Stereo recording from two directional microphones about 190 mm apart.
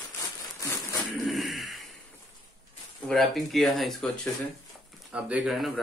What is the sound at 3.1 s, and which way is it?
Speech, centre (ahead or behind).